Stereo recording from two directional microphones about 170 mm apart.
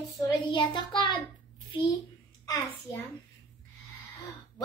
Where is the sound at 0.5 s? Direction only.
25° left (ahead or behind).